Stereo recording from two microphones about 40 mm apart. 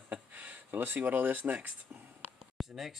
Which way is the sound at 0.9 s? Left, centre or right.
Right.